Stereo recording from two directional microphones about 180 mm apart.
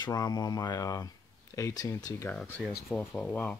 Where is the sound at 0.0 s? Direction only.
20° left (ahead or behind).